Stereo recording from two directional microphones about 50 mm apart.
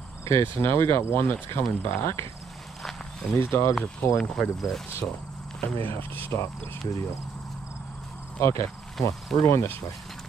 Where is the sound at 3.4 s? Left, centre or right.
Left.